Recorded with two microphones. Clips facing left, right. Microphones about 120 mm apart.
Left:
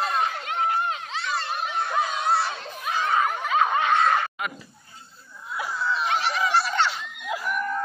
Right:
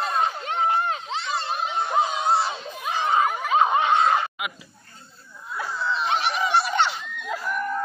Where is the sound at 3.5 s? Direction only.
20° right (ahead or behind).